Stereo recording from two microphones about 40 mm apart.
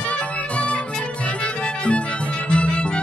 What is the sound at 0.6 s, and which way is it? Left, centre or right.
Music, left.